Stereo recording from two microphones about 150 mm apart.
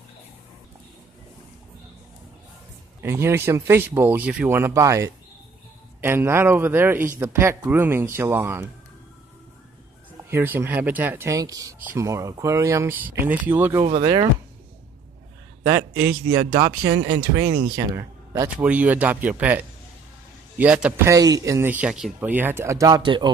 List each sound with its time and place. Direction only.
3.0 s a man's voice: 15° right (ahead or behind)
10.3 s a man's voice: 15° right (ahead or behind)
16.1 s a man's voice: 15° right (ahead or behind)
17.5 s speech: 90° right
17.7 s speech: 20° right (ahead or behind)
18.6 s a man's voice: 10° right (ahead or behind); by 23.3 s 30° right (ahead or behind)